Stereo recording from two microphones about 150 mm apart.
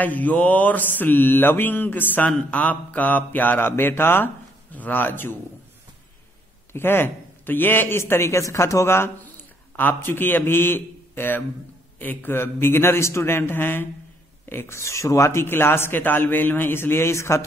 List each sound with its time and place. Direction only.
0.0 s mantra: 10° left (ahead or behind)
6.7 s mantra: 15° left (ahead or behind)